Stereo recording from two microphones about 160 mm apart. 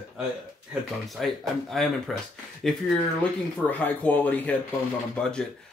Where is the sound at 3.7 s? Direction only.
10° left (ahead or behind).